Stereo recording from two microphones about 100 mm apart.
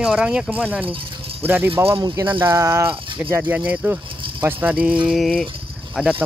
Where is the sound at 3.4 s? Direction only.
15° right (ahead or behind).